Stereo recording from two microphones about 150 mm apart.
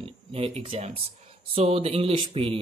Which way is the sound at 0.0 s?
40° right (ahead or behind).